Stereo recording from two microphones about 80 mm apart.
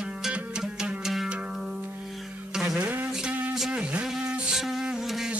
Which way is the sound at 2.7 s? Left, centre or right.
Right.